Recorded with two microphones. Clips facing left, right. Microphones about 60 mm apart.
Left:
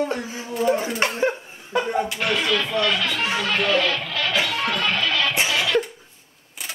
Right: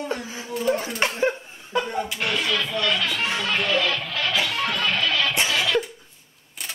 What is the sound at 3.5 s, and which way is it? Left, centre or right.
Music, centre.